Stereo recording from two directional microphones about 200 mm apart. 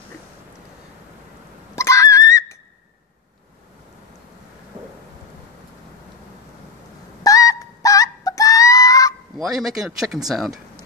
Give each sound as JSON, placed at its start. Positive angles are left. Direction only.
{"t": 1.8, "sound": "a sound", "side_deg": 15}
{"t": 7.2, "sound": "music", "side_deg": 15}
{"t": 9.4, "sound": "speech", "side_deg": 0}